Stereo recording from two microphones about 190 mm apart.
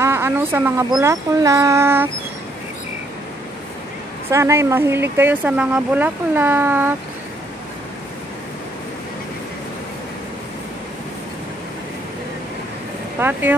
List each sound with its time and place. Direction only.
0.0 s a sound: 15° right (ahead or behind)
1.0 s speech: 15° right (ahead or behind)
4.3 s speech: 15° right (ahead or behind)
13.2 s speech: 10° right (ahead or behind)